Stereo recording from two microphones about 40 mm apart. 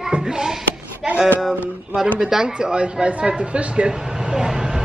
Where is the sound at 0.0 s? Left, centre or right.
Centre.